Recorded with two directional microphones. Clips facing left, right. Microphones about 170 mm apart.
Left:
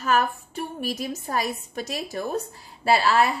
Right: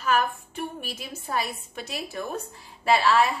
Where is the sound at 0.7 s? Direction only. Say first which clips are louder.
Left 8 dB; 40° left (ahead or behind).